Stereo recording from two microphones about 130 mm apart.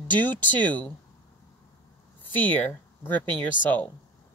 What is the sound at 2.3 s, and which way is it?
Speech, 15° left (ahead or behind).